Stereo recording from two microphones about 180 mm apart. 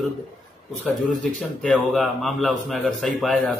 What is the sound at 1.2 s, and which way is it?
A man's voice, 5° left (ahead or behind).